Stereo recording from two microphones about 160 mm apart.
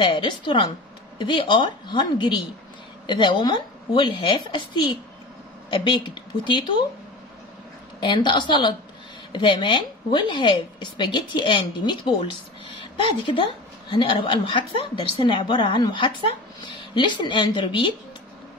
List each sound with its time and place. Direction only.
0.0 s a woman's voice: 30° left (ahead or behind)
8.0 s a woman's voice: 30° left (ahead or behind)